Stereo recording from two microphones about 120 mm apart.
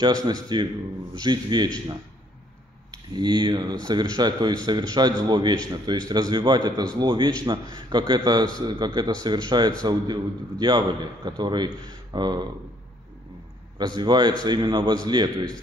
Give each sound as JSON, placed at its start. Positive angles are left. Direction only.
{"t": 0.0, "sound": "a man's voice", "side_deg": -35}
{"t": 3.2, "sound": "a man's voice", "side_deg": -40}
{"t": 13.7, "sound": "a man's voice", "side_deg": -35}